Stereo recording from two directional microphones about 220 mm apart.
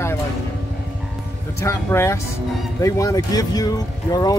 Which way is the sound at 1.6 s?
10° left (ahead or behind).